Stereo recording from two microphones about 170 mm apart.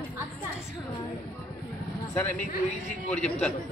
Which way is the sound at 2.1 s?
10° left (ahead or behind).